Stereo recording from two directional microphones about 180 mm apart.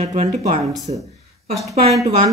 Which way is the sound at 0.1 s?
40° right (ahead or behind).